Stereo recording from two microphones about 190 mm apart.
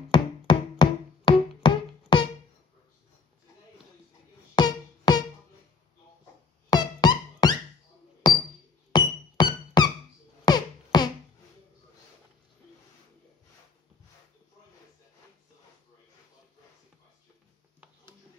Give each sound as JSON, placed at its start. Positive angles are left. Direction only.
{"t": 0.1, "sound": "music", "side_deg": 25}
{"t": 4.6, "sound": "music", "side_deg": 25}
{"t": 6.7, "sound": "music", "side_deg": 20}
{"t": 8.9, "sound": "music", "side_deg": 20}